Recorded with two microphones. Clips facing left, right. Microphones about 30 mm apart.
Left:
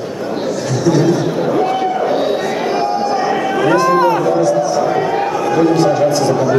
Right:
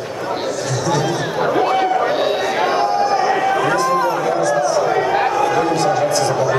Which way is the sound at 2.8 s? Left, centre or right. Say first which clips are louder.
Even; centre.